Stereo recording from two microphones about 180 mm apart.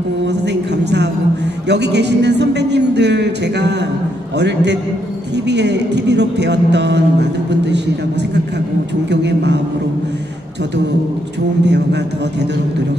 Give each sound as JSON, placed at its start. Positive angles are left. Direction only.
{"t": 0.3, "sound": "a sound", "side_deg": -70}
{"t": 1.7, "sound": "speech", "side_deg": -70}
{"t": 9.1, "sound": "speech", "side_deg": -70}
{"t": 11.6, "sound": "speech", "side_deg": -70}